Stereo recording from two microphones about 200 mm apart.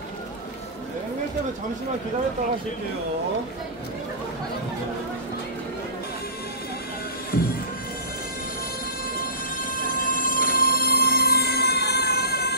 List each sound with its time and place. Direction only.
7.3 s music: 50° left (ahead or behind)
9.2 s train: 45° left (ahead or behind)